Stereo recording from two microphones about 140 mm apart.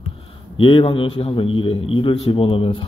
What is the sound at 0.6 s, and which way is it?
A man's voice, 40° left (ahead or behind).